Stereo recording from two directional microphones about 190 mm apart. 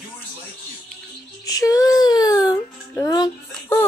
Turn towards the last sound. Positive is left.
turn(degrees=15)  # may be behind; listen again after turning